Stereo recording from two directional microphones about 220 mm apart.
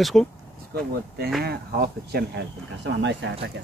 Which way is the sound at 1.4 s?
45° right (ahead or behind).